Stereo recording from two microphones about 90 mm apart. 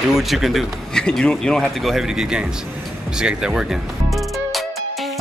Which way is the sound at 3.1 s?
10° right (ahead or behind).